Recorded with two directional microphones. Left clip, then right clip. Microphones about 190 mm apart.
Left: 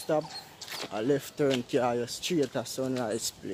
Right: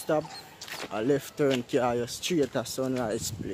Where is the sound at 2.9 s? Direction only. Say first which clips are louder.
Right 1 dB; 5° right (ahead or behind).